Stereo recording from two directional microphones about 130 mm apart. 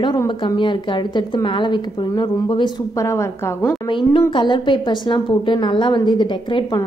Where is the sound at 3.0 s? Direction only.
20° left (ahead or behind).